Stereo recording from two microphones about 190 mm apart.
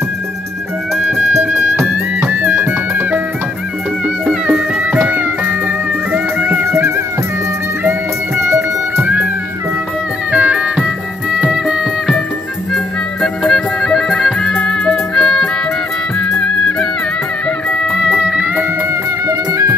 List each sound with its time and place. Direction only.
1.3 s music: 10° right (ahead or behind)
4.3 s music: 5° right (ahead or behind)
8.5 s music: 15° right (ahead or behind)
10.3 s music: 5° right (ahead or behind)
19.2 s music: 15° right (ahead or behind)